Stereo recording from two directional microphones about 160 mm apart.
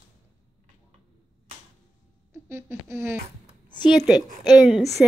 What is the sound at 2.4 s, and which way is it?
Speech, 15° right (ahead or behind).